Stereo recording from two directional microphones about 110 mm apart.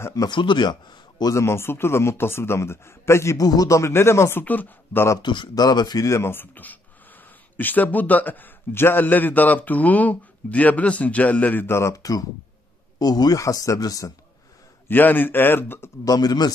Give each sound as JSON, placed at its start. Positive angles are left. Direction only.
{"t": 0.0, "sound": "speech", "side_deg": 35}
{"t": 1.3, "sound": "a man's voice", "side_deg": 25}
{"t": 5.2, "sound": "speech", "side_deg": 45}
{"t": 6.0, "sound": "speech", "side_deg": 25}
{"t": 14.9, "sound": "a man's voice", "side_deg": 15}
{"t": 16.0, "sound": "speech", "side_deg": 35}